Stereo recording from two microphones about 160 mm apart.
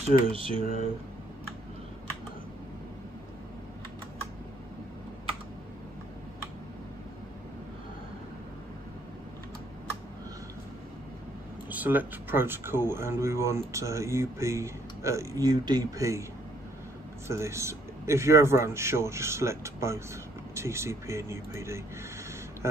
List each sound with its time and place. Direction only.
0.0 s speech: 35° right (ahead or behind)
11.7 s speech: 10° right (ahead or behind)
17.3 s speech: 15° right (ahead or behind)